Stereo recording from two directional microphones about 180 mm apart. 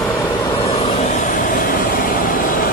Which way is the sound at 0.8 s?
45° left (ahead or behind).